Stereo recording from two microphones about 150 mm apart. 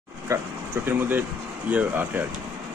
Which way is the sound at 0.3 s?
20° right (ahead or behind).